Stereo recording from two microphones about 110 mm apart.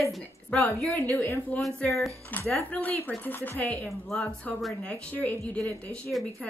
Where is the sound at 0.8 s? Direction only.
15° left (ahead or behind).